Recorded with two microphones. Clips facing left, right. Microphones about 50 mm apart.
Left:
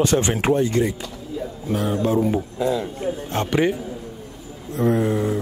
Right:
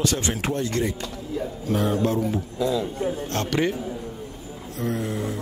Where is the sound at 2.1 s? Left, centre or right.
Left.